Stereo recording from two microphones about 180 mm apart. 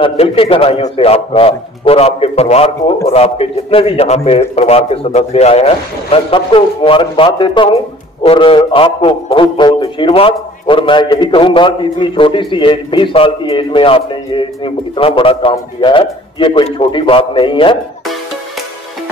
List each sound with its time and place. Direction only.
0.0 s a man's voice: 30° left (ahead or behind)